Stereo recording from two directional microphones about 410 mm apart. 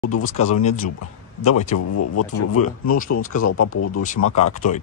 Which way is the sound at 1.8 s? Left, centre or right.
Left.